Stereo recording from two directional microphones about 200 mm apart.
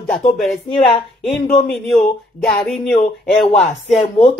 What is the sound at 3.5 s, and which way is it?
Speech, 35° left (ahead or behind).